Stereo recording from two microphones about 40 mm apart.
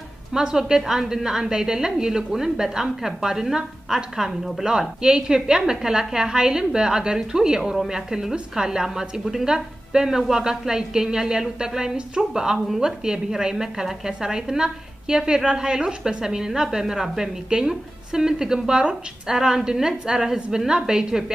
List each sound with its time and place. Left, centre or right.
0.3 s a woman's voice: centre
4.6 s a woman's voice: centre